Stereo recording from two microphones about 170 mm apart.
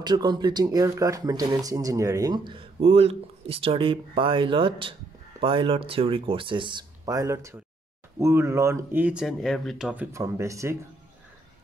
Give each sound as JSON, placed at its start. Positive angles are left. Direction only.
{"t": 0.0, "sound": "speech", "side_deg": -25}
{"t": 10.1, "sound": "speech", "side_deg": -15}